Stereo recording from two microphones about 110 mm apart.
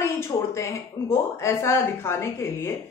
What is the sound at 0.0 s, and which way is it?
Speech, 25° left (ahead or behind).